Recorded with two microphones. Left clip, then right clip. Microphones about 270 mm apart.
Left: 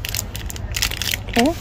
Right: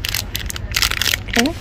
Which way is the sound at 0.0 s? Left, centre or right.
Centre.